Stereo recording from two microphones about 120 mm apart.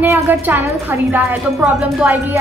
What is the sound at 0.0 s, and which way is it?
A woman's voice, 20° right (ahead or behind).